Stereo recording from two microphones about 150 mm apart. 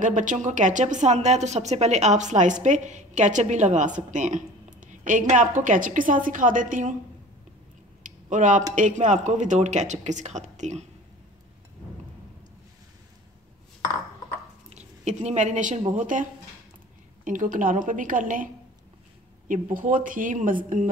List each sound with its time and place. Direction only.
0.0 s a woman's voice: 60° right (ahead or behind)
8.0 s a sound: 55° right (ahead or behind)
8.7 s speech: 55° right (ahead or behind)
14.7 s speech: 50° right (ahead or behind)
17.2 s a woman's voice: 60° right (ahead or behind)